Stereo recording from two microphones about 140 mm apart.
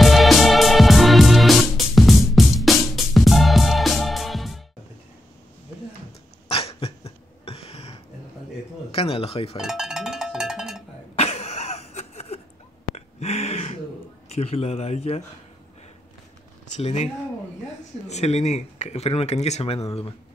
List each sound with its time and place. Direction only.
0.0 s music: centre (ahead or behind)
6.5 s cough: 45° left (ahead or behind)
8.9 s a sound: 45° left (ahead or behind)
9.6 s cowbell: 5° right (ahead or behind)
11.1 s cough: 50° left (ahead or behind)
12.9 s a sound: 50° left (ahead or behind)
14.3 s speech: 45° left (ahead or behind)
16.7 s speech: 55° left (ahead or behind)